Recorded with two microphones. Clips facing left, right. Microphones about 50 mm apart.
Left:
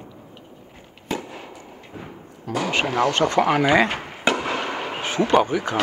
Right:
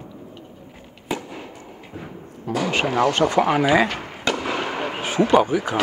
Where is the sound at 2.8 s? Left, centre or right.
Centre.